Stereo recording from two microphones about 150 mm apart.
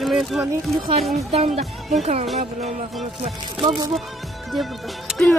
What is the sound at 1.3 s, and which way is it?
Speech, 45° right (ahead or behind).